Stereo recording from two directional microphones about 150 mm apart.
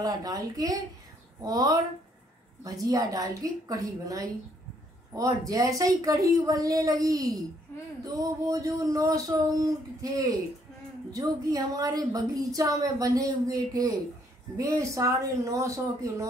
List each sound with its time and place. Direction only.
0.0 s a woman's voice: 25° right (ahead or behind)
11.1 s a woman's voice: 25° right (ahead or behind)